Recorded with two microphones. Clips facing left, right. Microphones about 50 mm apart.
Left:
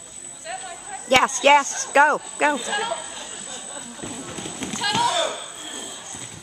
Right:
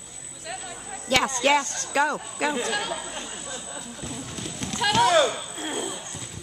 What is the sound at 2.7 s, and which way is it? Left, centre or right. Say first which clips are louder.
Speech: left 3 dB; left.